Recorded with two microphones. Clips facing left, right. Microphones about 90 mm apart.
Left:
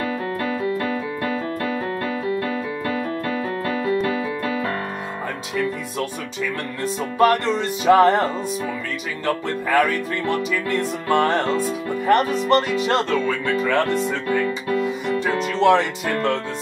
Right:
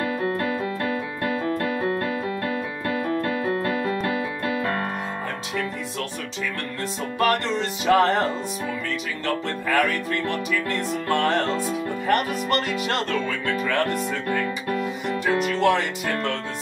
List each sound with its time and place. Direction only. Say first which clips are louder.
0.2 s keyboard: left 1 dB; 50° right (ahead or behind)
3.6 s keyboard: left 3 dB; 50° right (ahead or behind)
7.2 s music: left 5 dB; 20° left (ahead or behind)
9.2 s music: left 5 dB; 20° left (ahead or behind)
14.4 s speech: left 4 dB; 15° right (ahead or behind)
15.6 s music: left 8 dB; 20° left (ahead or behind)